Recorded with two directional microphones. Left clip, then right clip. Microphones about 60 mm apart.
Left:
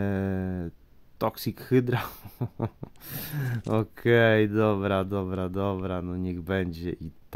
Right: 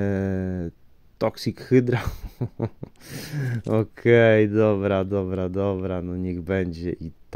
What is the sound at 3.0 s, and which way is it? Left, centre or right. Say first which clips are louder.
Speech: right 3 dB; right.